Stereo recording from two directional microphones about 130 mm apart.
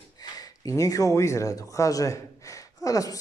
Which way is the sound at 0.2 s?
25° left (ahead or behind).